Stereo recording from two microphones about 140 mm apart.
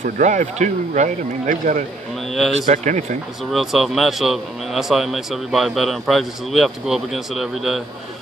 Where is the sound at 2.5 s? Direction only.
55° right (ahead or behind).